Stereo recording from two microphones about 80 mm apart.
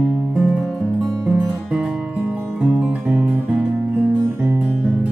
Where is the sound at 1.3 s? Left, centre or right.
Centre.